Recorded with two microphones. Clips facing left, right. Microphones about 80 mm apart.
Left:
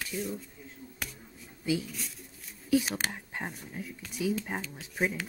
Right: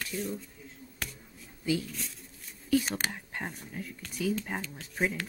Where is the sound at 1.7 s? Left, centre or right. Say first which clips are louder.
Even; centre.